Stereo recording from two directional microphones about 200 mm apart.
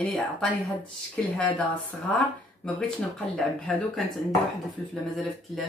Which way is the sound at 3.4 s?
Centre (ahead or behind).